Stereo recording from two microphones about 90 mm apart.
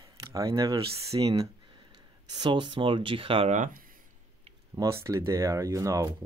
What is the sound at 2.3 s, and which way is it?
Speech, 55° right (ahead or behind).